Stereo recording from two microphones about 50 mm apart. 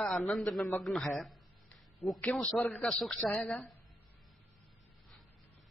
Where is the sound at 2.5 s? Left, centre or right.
Centre.